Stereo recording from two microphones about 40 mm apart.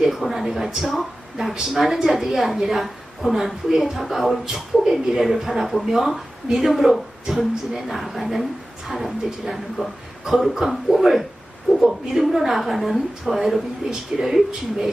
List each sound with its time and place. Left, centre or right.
0.0 s a sound: centre
0.5 s a woman's voice: centre
7.2 s speech: centre
7.9 s a woman's voice: centre
9.8 s speech: right
10.2 s a woman's voice: centre